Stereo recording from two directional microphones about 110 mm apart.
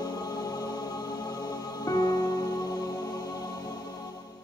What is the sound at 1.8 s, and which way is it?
Music, 35° left (ahead or behind).